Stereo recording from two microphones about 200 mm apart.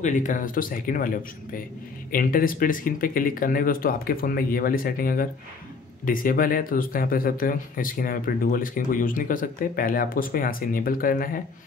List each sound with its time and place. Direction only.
0.0 s speech: 40° left (ahead or behind)